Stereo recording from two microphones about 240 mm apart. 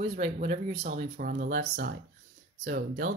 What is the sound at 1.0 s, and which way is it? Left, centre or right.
Speech, right.